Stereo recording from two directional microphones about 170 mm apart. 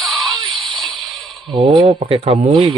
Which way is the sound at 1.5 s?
30° right (ahead or behind).